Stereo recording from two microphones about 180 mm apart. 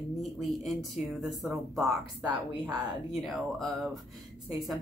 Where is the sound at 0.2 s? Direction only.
Centre (ahead or behind).